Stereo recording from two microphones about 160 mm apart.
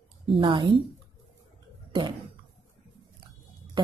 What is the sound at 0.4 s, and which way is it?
Speech, 30° right (ahead or behind).